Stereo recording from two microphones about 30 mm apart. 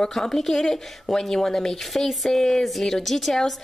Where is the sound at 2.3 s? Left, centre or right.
Centre.